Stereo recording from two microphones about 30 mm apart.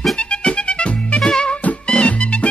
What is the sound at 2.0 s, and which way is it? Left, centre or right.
Music, left.